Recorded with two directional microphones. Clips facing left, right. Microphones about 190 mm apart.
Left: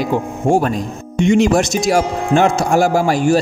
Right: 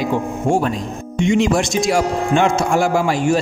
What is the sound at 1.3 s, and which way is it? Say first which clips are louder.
Speech: left 3 dB; 40° left (ahead or behind).